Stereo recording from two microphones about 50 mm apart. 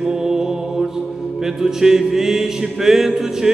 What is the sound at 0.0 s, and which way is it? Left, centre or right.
Mantra, centre.